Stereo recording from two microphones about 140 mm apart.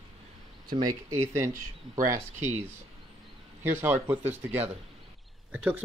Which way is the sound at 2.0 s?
20° right (ahead or behind).